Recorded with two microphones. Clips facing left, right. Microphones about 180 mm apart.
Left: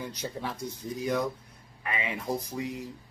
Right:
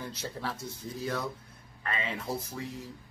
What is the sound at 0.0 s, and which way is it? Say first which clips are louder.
Speech: left 2 dB; 15° left (ahead or behind).